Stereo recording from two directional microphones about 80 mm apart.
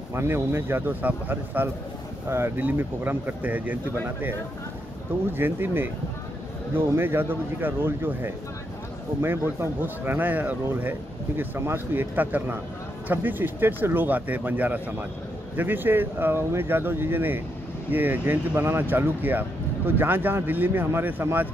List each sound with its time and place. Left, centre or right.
0.1 s speech: right
5.4 s speech: right